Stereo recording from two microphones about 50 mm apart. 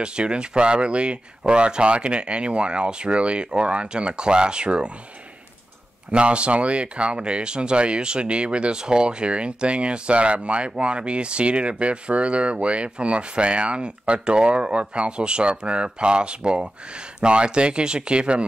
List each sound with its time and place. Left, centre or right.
0.0 s speech: centre
6.1 s speech: right